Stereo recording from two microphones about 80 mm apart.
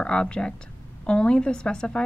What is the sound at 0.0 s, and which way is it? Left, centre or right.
A woman's voice, centre.